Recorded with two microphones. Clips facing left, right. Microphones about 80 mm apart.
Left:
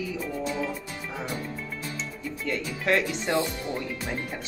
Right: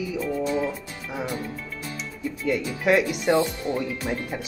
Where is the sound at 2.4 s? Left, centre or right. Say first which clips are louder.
Right 5 dB; centre.